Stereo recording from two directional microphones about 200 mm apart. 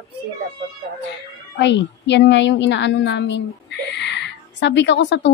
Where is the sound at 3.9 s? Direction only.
60° left (ahead or behind).